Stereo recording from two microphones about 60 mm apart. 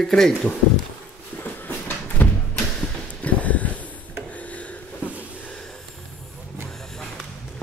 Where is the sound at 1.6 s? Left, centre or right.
Left.